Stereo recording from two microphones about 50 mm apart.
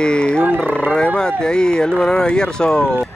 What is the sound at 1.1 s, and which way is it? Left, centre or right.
Speech, centre.